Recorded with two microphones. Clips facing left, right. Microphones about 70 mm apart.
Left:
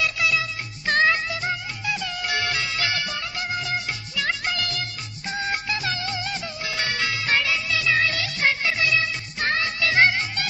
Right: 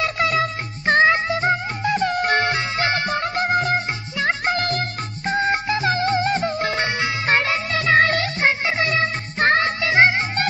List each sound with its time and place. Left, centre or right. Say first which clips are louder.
0.0 s music: right 4 dB; right
0.8 s music: right 5 dB; right
6.8 s music: right 4 dB; right
7.2 s music: right 4 dB; right
8.4 s music: left 1 dB; right
9.8 s music: right 3 dB; right